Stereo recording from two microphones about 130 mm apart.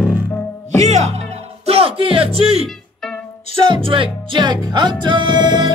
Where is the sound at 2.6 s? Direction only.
5° left (ahead or behind).